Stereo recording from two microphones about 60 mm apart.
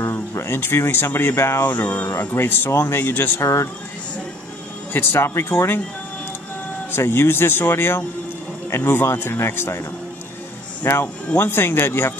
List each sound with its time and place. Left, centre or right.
0.1 s speech: left
1.7 s speech: left
2.0 s speech: left
4.9 s speech: left
6.9 s speech: left
10.8 s speech: left